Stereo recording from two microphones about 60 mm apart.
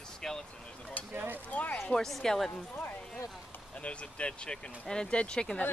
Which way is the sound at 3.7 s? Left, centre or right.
Centre.